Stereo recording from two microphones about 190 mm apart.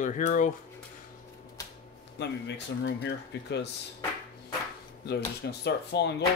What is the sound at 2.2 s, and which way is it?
Speech, 60° left (ahead or behind).